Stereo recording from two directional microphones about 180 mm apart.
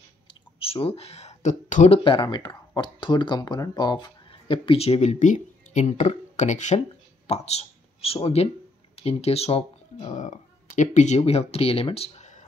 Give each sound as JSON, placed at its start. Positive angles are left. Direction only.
{"t": 0.3, "sound": "speech", "side_deg": 30}
{"t": 2.0, "sound": "speech", "side_deg": 25}